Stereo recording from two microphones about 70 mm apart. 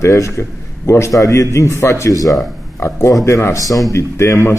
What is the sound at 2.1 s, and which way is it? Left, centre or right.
Speech, left.